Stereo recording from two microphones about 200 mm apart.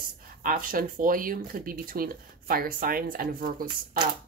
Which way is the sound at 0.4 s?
45° right (ahead or behind).